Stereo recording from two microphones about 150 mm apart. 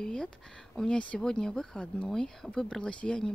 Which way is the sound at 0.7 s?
5° left (ahead or behind).